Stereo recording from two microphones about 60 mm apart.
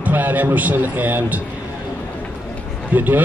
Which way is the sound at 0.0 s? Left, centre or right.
Right.